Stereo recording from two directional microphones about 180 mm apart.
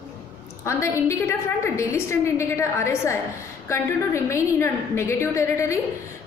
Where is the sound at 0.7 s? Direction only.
15° left (ahead or behind).